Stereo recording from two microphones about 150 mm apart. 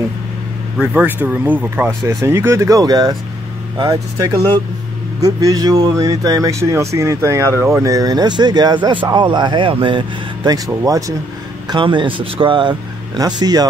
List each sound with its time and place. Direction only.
0.7 s speech: 10° right (ahead or behind); by 13.7 s 25° right (ahead or behind)